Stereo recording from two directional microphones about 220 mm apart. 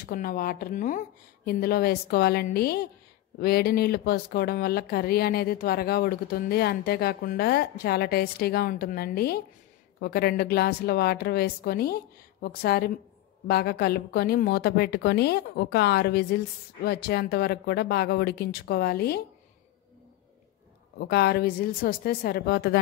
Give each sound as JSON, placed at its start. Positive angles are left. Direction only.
{"t": 0.0, "sound": "speech", "side_deg": 40}
{"t": 21.0, "sound": "speech", "side_deg": 45}